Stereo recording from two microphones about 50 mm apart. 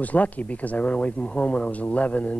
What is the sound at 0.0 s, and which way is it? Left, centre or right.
Speech, left.